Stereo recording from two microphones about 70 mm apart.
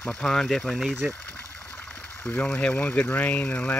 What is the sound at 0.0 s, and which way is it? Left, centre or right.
Speech, centre.